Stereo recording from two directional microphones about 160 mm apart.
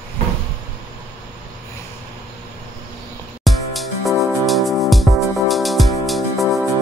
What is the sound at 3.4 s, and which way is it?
Music, centre (ahead or behind).